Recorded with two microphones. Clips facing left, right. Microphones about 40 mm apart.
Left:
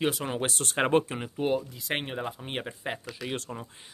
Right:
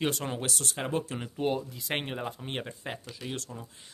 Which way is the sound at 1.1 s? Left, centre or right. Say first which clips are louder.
Left 2 dB; centre.